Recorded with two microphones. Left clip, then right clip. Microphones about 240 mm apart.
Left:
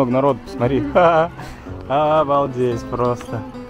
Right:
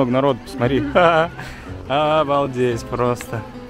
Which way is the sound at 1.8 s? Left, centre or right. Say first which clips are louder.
Left 1 dB; right.